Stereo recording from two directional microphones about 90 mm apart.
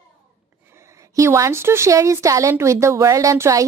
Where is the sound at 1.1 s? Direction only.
35° right (ahead or behind).